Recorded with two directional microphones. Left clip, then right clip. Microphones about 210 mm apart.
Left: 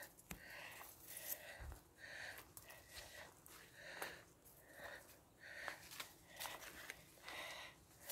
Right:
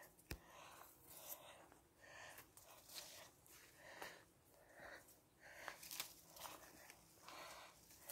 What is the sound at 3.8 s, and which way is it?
Sniff, 5° left (ahead or behind).